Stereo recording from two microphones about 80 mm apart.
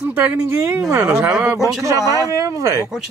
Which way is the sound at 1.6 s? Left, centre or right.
Right.